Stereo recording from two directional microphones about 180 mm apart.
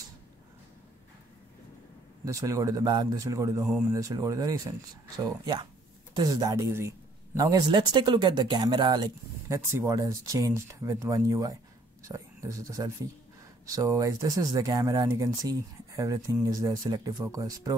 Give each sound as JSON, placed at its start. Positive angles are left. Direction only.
{"t": 2.2, "sound": "speech", "side_deg": -20}
{"t": 3.6, "sound": "speech", "side_deg": -5}
{"t": 3.9, "sound": "speech", "side_deg": -20}